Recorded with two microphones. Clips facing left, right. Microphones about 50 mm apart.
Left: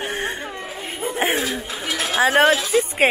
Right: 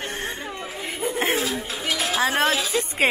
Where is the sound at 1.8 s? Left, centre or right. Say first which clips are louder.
Left 1 dB; left.